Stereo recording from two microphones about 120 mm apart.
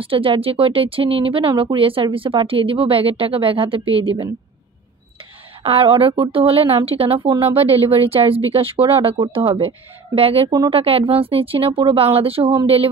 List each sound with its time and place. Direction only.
0.0 s a woman's voice: 50° right (ahead or behind)
5.6 s a woman's voice: 50° right (ahead or behind)
10.5 s speech: 40° right (ahead or behind)
10.8 s a woman's voice: 50° right (ahead or behind)